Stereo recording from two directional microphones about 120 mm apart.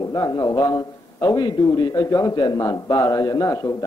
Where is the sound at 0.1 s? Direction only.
30° left (ahead or behind).